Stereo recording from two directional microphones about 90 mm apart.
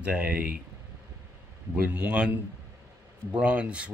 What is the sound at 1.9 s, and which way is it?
Speech, 15° right (ahead or behind).